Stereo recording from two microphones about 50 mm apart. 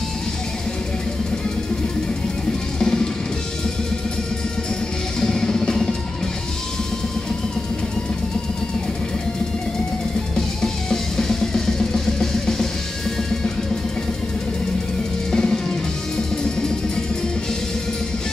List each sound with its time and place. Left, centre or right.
2.8 s music: centre
5.2 s music: centre
10.6 s music: centre
15.3 s music: centre